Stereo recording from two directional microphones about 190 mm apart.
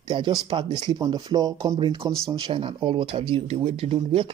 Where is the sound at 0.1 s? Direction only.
25° right (ahead or behind).